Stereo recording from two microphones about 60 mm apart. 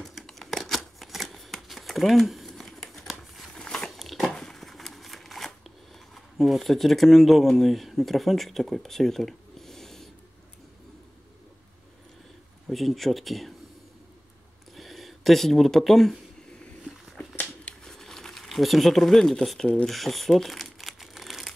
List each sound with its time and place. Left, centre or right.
0.3 s shuffling cards: centre
3.5 s a sound: centre
12.6 s speech: centre
14.7 s speech: centre
17.2 s dog: left
17.8 s a sound: centre